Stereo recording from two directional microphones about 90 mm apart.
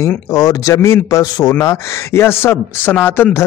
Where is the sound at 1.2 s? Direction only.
45° left (ahead or behind).